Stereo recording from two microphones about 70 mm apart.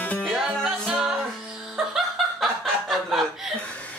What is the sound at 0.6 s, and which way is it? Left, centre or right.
Music, centre.